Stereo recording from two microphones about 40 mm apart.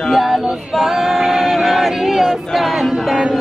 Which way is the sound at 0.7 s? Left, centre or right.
Centre.